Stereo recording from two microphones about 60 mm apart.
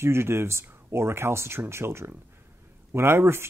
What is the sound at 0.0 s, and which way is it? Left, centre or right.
Speech, right.